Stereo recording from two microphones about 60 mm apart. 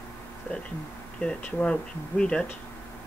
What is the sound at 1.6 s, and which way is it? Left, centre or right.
Speech, centre.